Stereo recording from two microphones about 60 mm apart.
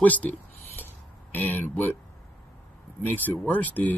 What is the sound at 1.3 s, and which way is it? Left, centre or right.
Speech, left.